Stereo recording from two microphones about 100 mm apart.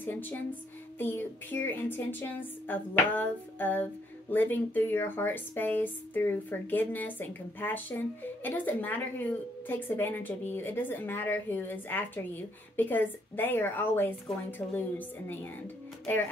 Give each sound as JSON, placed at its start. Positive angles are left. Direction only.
{"t": 0.0, "sound": "a woman's voice", "side_deg": 20}